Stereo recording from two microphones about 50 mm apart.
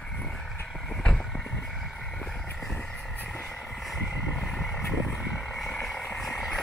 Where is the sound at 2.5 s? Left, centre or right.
Centre.